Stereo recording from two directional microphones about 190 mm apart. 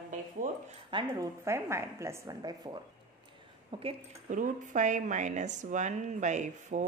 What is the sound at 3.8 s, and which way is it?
Speech, 40° right (ahead or behind).